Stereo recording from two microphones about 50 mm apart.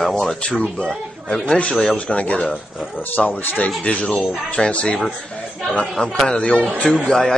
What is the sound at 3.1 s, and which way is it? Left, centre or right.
Speech, left.